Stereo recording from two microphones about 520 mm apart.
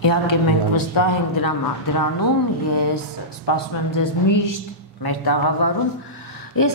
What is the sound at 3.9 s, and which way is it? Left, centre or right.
A woman's voice, left.